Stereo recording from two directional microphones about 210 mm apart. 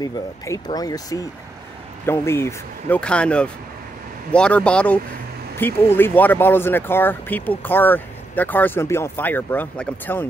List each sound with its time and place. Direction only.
0.0 s speech: 15° left (ahead or behind)